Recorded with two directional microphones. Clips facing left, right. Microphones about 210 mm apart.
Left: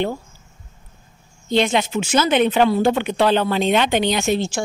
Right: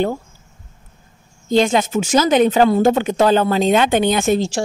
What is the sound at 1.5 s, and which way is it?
A woman's voice, 45° right (ahead or behind).